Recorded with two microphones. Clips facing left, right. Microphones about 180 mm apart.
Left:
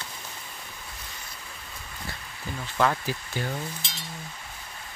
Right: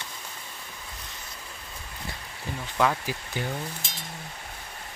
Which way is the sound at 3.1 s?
10° right (ahead or behind).